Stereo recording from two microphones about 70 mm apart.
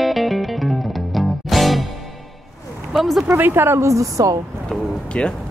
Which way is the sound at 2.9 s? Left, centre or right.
Centre.